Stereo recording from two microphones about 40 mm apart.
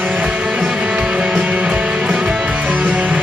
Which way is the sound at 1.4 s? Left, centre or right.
Right.